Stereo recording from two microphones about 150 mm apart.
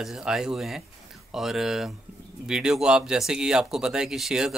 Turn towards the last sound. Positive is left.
turn(degrees=-5)  # may be behind; listen again after turning